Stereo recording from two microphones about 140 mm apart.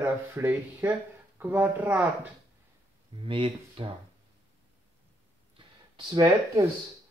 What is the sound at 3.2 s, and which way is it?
Speech, 40° right (ahead or behind).